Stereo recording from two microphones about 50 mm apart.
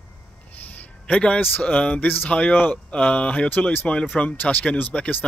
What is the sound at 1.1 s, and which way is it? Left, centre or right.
A man's voice, left.